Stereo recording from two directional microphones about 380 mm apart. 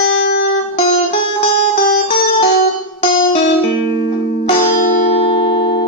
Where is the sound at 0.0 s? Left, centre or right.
Left.